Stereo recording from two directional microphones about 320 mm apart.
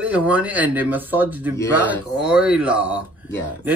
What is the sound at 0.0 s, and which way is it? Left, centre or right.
Speech, centre.